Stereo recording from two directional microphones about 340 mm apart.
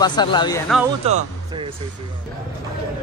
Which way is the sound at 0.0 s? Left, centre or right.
Centre.